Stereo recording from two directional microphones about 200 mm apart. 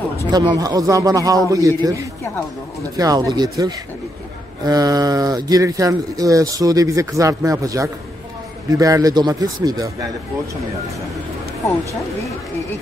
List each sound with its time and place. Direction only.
0.3 s a man's voice: 20° right (ahead or behind)